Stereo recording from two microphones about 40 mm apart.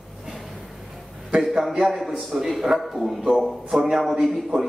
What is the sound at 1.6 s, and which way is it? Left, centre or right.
A man's voice, centre.